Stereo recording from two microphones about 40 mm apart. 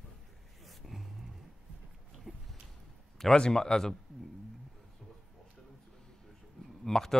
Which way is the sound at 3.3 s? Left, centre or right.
Centre.